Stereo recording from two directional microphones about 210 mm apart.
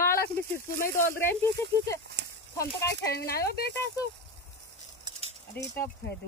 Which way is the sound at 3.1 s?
50° left (ahead or behind).